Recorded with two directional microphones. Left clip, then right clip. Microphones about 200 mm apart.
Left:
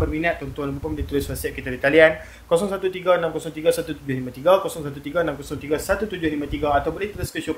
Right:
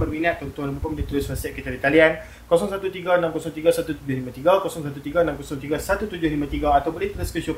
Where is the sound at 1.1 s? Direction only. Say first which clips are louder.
Left 3 dB; 50° left (ahead or behind).